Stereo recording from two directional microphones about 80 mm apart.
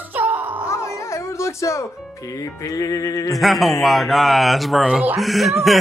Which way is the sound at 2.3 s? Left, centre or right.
Left.